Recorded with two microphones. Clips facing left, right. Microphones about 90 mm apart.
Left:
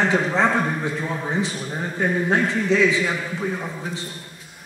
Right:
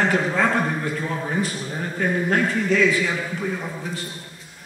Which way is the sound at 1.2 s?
20° left (ahead or behind).